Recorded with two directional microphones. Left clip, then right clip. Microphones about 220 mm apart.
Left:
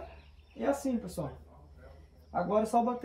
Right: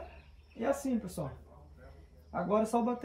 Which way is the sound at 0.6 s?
Centre (ahead or behind).